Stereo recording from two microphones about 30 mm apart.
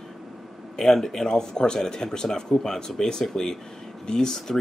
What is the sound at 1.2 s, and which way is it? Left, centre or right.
Speech, left.